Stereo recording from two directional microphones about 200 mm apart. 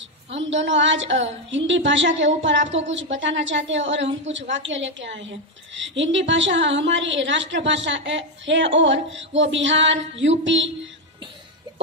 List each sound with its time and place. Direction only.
0.3 s a woman's voice: 65° right (ahead or behind)